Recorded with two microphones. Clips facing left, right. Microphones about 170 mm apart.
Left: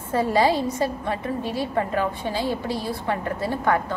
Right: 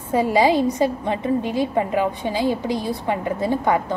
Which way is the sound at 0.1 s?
15° right (ahead or behind).